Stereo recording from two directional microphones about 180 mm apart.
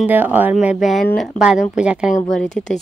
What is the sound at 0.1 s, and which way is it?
Speech, 10° right (ahead or behind).